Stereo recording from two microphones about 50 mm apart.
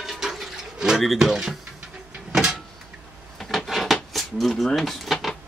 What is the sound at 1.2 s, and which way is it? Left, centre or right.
Speech, centre.